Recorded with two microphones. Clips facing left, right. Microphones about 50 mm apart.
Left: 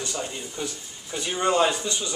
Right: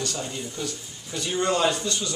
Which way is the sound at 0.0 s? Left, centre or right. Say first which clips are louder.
Right 1 dB; centre.